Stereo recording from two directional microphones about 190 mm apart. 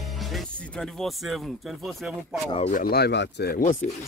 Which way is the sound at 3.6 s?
40° left (ahead or behind).